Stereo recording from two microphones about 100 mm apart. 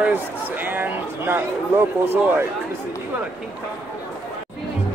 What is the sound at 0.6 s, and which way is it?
Speech, 20° right (ahead or behind).